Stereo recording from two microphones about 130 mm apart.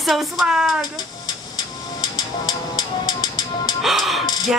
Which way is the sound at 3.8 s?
Centre (ahead or behind).